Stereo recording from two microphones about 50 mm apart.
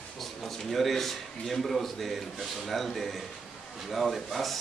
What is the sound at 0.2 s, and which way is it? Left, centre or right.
Speech, centre.